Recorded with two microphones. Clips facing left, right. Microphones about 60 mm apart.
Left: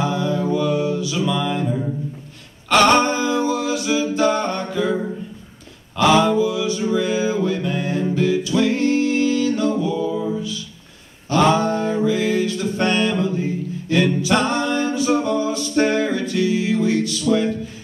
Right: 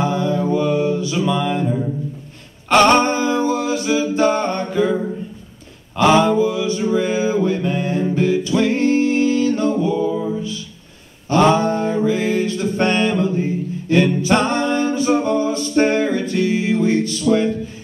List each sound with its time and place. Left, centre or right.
0.0 s music: right
2.7 s a capella: right
5.9 s mantra: right
11.2 s a sound: right
13.8 s music: right